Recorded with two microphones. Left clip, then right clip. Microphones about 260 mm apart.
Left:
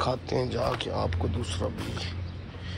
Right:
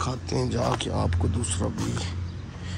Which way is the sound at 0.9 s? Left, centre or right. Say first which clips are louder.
Right 1 dB; centre.